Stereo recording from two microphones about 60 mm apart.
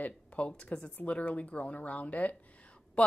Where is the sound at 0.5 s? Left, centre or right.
Centre.